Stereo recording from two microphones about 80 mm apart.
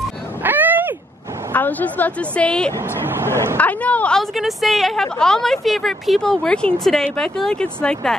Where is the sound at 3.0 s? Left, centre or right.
Right.